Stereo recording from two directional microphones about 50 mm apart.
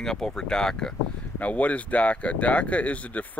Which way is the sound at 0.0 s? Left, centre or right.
Centre.